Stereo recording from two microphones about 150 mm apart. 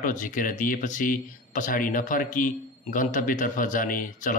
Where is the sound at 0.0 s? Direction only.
60° left (ahead or behind).